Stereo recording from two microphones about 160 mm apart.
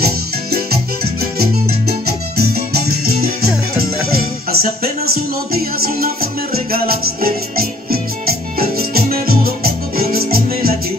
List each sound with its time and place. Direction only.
0.0 s music: 75° right (ahead or behind)